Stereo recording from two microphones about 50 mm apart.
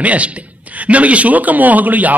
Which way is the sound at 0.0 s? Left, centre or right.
Right.